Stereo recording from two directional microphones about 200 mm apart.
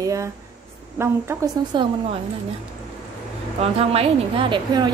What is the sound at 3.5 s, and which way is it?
A woman's voice, 30° right (ahead or behind).